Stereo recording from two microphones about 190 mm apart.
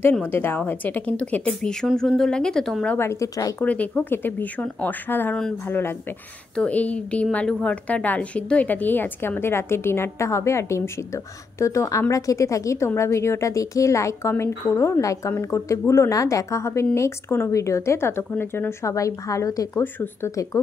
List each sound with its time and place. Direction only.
0.0 s a woman's voice: 10° left (ahead or behind)